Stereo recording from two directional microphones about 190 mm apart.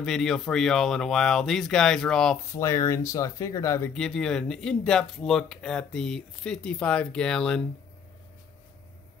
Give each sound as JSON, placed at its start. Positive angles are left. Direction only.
{"t": 0.0, "sound": "speech", "side_deg": 0}
{"t": 2.5, "sound": "speech", "side_deg": 15}
{"t": 3.9, "sound": "speech", "side_deg": 5}